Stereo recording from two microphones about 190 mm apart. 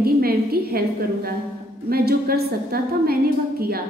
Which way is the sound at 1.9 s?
55° right (ahead or behind).